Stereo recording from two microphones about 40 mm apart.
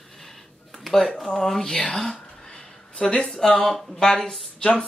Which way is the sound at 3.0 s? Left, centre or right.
Left.